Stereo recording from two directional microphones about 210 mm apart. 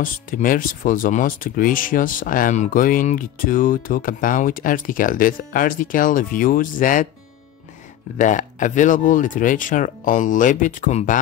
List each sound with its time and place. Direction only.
0.0 s speech: 40° left (ahead or behind)
8.2 s speech: 35° left (ahead or behind)